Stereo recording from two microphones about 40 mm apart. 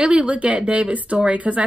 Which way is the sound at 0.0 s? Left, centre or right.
Right.